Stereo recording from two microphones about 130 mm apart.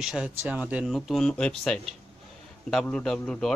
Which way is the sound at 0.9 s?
Centre (ahead or behind).